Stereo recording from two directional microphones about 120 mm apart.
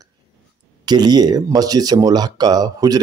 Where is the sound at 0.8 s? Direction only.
35° right (ahead or behind).